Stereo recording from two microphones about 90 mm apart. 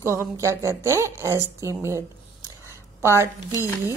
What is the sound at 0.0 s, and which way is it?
A woman's voice, 30° right (ahead or behind).